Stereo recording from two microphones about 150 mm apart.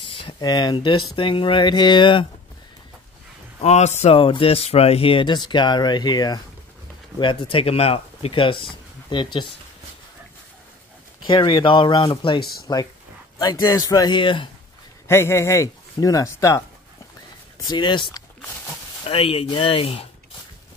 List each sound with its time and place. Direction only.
0.0 s speech: 35° left (ahead or behind)
3.6 s speech: 50° left (ahead or behind); by 9.5 s 30° left (ahead or behind)
11.2 s speech: 30° left (ahead or behind)
15.0 s speech: 15° left (ahead or behind)
17.6 s speech: 30° left (ahead or behind)